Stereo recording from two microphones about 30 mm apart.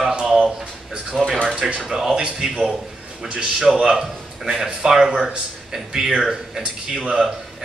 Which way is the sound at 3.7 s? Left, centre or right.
Centre.